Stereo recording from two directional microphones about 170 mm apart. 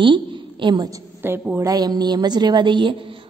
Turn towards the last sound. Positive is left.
turn(degrees=-30)  # may be behind; listen again after turning